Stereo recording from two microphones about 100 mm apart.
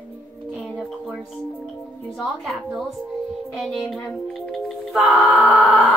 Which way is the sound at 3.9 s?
5° left (ahead or behind).